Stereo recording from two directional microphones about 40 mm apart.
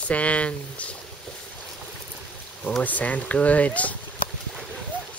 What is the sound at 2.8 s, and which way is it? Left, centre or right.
Speech, left.